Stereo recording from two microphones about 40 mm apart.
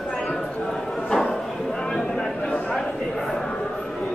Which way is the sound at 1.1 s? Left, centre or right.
Centre.